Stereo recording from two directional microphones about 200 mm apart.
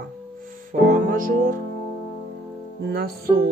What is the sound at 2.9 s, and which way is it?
Speech, 50° right (ahead or behind).